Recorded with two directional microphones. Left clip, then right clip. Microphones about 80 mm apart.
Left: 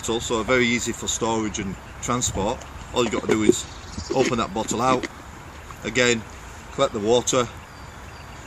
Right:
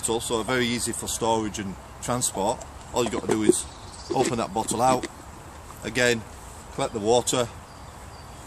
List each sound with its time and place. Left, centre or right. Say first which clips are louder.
0.0 s speech: left 2 dB; right
4.1 s speech: left 3 dB; right
5.9 s speech: left 2 dB; right